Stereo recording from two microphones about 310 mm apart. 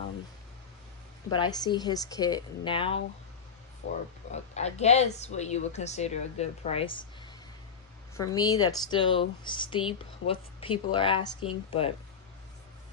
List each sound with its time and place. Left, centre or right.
1.3 s speech: centre
4.3 s a woman's voice: left
8.2 s speech: centre